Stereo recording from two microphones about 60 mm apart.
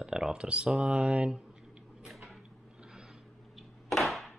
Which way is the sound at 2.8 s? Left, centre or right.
Centre.